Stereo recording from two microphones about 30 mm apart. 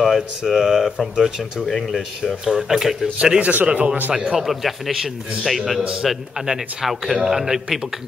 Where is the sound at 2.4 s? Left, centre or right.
Centre.